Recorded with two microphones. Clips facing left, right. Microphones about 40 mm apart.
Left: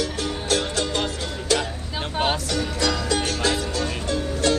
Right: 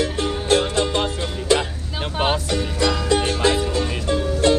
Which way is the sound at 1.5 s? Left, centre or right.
Right.